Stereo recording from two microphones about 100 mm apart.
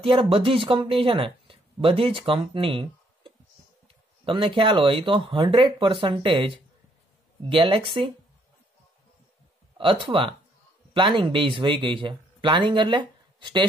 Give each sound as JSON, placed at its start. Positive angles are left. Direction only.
{"t": 0.0, "sound": "speech", "side_deg": -65}
{"t": 9.8, "sound": "speech", "side_deg": -55}